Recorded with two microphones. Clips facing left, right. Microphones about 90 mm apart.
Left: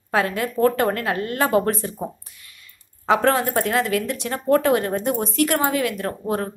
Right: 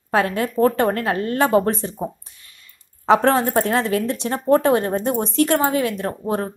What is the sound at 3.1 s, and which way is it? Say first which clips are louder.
A woman's voice: right 3 dB; 30° right (ahead or behind).